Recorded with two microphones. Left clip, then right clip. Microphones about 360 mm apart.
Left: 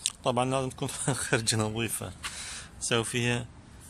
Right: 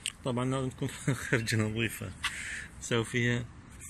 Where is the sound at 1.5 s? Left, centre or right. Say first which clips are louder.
Left 2 dB; left.